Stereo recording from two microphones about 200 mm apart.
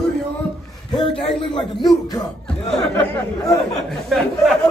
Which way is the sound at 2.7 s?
10° left (ahead or behind).